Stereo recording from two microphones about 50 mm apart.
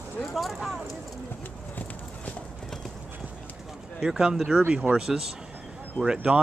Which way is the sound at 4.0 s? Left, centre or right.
Centre.